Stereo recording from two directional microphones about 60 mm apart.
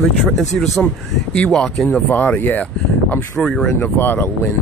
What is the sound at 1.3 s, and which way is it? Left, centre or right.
Speech, centre.